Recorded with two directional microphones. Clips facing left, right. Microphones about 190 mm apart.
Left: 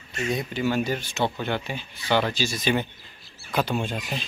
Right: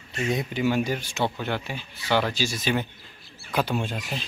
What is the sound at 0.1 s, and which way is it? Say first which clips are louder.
Speech: right 1 dB; 20° right (ahead or behind).